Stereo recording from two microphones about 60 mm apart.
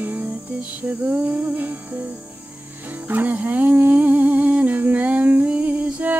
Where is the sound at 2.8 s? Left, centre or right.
Right.